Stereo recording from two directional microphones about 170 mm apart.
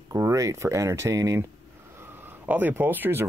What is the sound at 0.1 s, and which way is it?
Speech, 20° right (ahead or behind).